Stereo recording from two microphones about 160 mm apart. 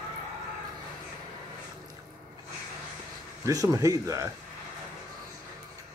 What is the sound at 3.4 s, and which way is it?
Speech, 20° right (ahead or behind).